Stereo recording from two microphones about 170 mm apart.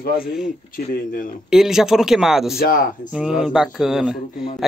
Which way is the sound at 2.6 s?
55° left (ahead or behind).